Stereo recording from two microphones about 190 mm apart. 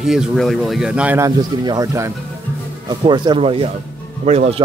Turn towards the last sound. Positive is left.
turn(degrees=-35)  # may be behind; listen again after turning